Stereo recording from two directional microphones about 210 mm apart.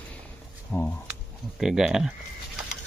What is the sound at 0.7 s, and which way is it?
Speech, 5° left (ahead or behind).